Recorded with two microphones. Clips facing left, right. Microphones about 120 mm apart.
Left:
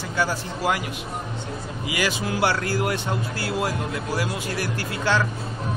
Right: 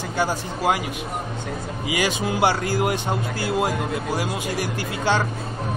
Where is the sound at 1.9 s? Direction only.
20° right (ahead or behind).